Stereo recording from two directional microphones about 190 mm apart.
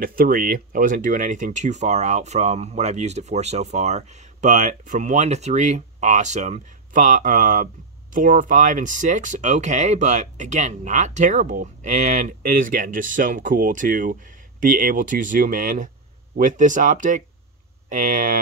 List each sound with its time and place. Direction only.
0.0 s speech: 50° right (ahead or behind)